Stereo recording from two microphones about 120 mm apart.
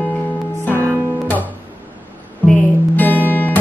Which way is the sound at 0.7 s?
20° right (ahead or behind).